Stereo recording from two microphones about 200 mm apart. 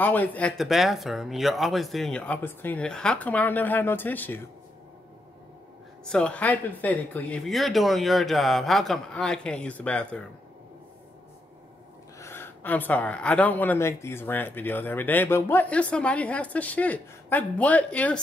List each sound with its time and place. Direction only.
0.0 s speech: 10° left (ahead or behind)
6.0 s speech: 5° left (ahead or behind)
12.2 s speech: 10° left (ahead or behind)